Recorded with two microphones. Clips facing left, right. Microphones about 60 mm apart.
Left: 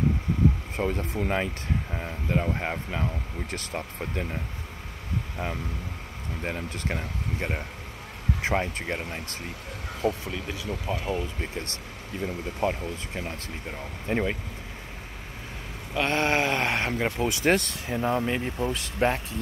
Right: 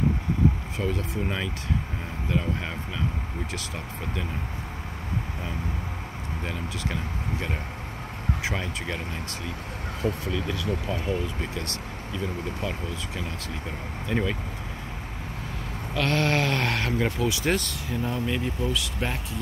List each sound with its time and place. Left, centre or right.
0.7 s speech: left
2.2 s speech: left
6.4 s speech: left
10.2 s speech: left
11.5 s speech: left
12.1 s speech: left
15.9 s speech: left
17.3 s speech: left